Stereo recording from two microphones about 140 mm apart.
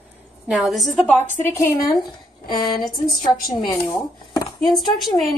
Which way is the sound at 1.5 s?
20° left (ahead or behind).